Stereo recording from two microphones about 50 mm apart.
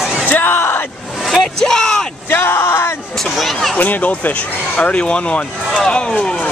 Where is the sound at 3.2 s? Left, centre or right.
Centre.